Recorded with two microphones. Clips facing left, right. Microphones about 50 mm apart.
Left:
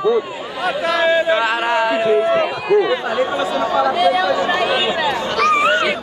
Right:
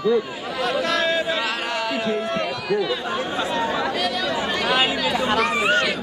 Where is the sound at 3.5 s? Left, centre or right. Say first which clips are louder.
Left 7 dB; centre.